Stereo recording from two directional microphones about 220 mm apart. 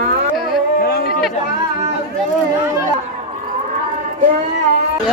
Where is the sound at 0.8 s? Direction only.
45° left (ahead or behind).